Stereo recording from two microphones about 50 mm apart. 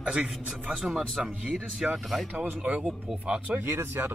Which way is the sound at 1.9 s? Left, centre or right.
Centre.